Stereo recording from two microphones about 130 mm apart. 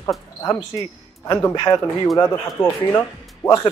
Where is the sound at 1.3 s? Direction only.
25° left (ahead or behind).